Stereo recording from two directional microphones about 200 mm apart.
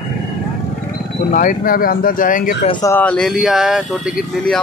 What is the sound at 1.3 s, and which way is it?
Speech, 45° left (ahead or behind).